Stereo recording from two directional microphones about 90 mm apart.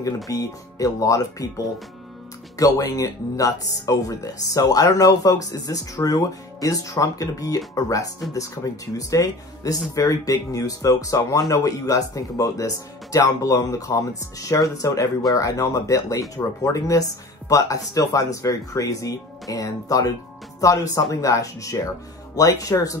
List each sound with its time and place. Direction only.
0.0 s speech: 40° left (ahead or behind)
2.5 s speech: 40° left (ahead or behind)